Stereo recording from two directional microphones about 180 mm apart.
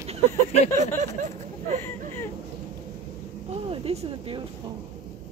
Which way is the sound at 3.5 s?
35° right (ahead or behind).